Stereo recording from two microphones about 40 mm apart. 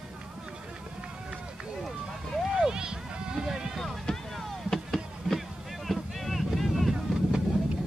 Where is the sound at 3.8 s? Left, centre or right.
Centre.